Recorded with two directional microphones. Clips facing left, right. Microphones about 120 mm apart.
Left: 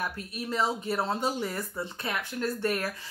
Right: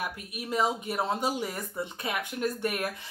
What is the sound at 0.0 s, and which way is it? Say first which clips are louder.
A woman's voice: left 2 dB; 10° right (ahead or behind).